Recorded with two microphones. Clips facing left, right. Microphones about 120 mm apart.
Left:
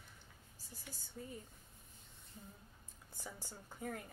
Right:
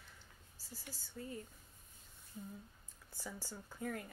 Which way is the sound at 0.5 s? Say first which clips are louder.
Right 3 dB; 20° left (ahead or behind).